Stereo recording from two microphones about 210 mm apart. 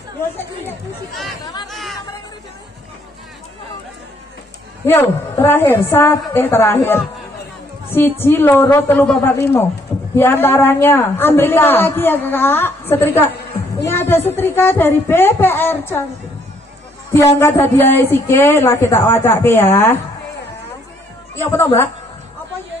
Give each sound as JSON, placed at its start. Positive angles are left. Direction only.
{"t": 0.7, "sound": "speech", "side_deg": 0}
{"t": 1.4, "sound": "speech", "side_deg": 20}
{"t": 1.7, "sound": "chatter", "side_deg": 0}
{"t": 4.8, "sound": "a woman's voice", "side_deg": 10}
{"t": 17.1, "sound": "a woman's voice", "side_deg": 10}
{"t": 21.4, "sound": "a woman's voice", "side_deg": 10}